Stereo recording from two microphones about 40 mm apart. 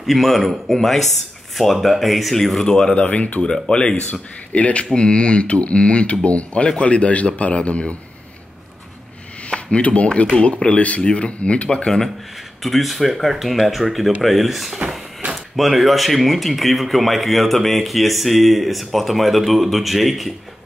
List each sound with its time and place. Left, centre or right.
0.0 s speech: centre
3.0 s a man's voice: left
3.4 s speech: centre
3.9 s a man's voice: left
9.5 s speech: left
12.6 s speech: centre